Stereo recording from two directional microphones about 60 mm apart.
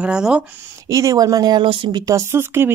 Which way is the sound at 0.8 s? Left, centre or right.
Right.